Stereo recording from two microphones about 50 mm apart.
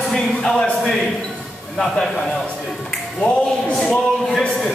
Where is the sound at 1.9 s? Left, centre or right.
Centre.